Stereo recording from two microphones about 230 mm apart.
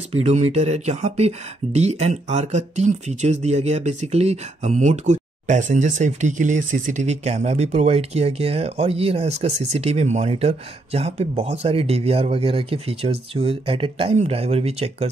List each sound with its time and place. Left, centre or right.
0.1 s speech: right